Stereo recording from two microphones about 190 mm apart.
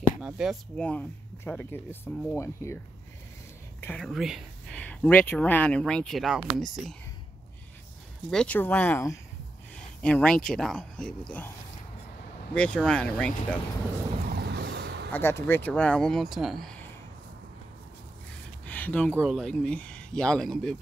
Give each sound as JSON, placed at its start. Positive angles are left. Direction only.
{"t": 0.2, "sound": "speech", "side_deg": -5}
{"t": 3.8, "sound": "speech", "side_deg": 5}
{"t": 8.3, "sound": "speech", "side_deg": 5}
{"t": 12.5, "sound": "speech", "side_deg": 5}
{"t": 14.3, "sound": "boat", "side_deg": -60}
{"t": 15.1, "sound": "speech", "side_deg": 10}
{"t": 18.7, "sound": "a sound", "side_deg": 10}
{"t": 19.1, "sound": "speech", "side_deg": 0}